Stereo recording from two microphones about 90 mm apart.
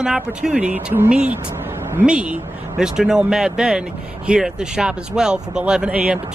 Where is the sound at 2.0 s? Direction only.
10° right (ahead or behind).